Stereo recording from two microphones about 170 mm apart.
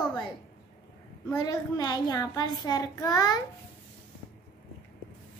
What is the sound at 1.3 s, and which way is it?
A child's voice, 20° left (ahead or behind).